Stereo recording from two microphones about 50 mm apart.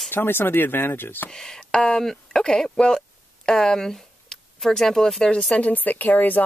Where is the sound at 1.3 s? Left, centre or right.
Centre.